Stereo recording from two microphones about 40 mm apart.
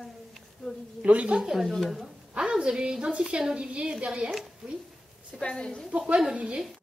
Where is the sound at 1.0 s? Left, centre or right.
Right.